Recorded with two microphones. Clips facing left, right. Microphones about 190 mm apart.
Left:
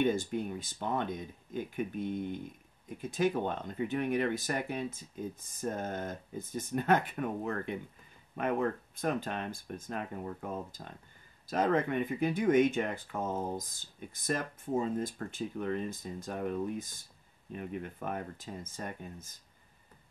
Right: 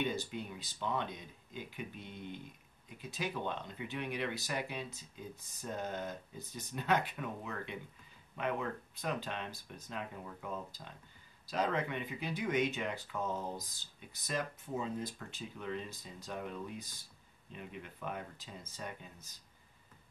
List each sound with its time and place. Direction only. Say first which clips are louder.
0.0 s speech: left 7 dB; 50° left (ahead or behind)